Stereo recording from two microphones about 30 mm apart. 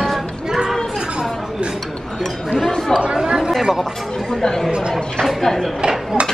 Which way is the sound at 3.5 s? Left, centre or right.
Centre.